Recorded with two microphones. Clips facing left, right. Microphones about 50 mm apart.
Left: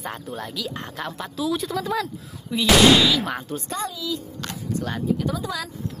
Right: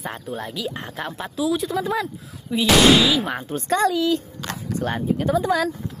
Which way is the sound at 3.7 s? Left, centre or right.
Right.